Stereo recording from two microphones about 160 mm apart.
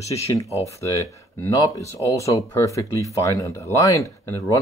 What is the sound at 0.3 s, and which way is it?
Speech, 20° left (ahead or behind).